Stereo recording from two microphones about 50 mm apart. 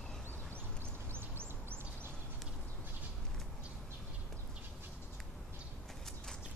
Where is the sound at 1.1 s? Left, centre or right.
Right.